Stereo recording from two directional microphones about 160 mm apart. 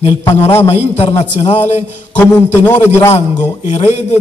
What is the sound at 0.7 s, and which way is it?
A man's voice, 40° left (ahead or behind).